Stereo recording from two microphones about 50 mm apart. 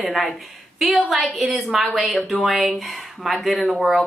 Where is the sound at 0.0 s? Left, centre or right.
Centre.